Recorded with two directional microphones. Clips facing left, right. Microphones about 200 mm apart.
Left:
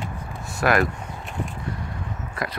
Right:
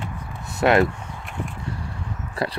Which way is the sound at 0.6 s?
25° right (ahead or behind).